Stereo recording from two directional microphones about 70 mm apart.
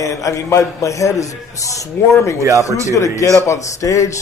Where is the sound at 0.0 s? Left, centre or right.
Left.